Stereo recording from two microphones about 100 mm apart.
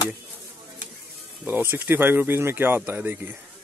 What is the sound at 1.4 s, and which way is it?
Speech, 20° right (ahead or behind).